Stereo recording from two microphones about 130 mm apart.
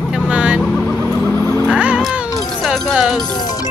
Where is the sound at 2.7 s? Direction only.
5° right (ahead or behind).